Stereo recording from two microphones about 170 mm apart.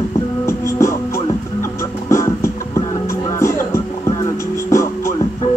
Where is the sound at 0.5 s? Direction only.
15° left (ahead or behind).